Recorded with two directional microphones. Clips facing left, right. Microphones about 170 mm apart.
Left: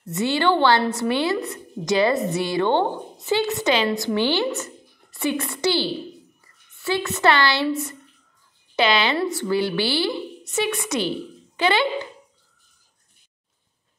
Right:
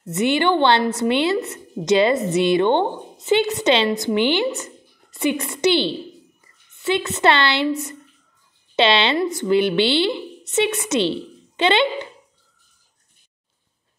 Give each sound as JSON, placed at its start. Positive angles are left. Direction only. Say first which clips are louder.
{"t": 0.0, "sound": "a woman's voice", "louder": "right 2 dB", "side_deg": -20}
{"t": 8.7, "sound": "a woman's voice", "louder": "right 2 dB", "side_deg": -25}